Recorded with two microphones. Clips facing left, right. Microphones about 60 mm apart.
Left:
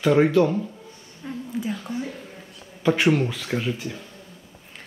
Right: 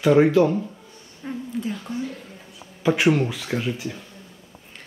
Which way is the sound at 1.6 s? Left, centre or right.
Centre.